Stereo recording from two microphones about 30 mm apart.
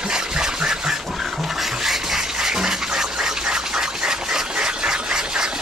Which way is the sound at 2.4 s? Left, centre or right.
Centre.